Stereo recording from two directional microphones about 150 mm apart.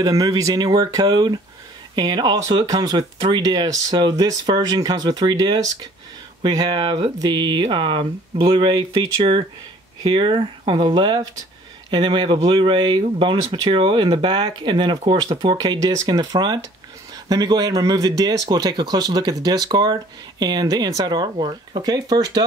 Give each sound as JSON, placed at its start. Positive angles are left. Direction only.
{"t": 0.0, "sound": "speech", "side_deg": -25}